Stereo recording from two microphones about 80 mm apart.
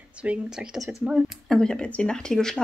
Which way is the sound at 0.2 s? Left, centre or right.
Centre.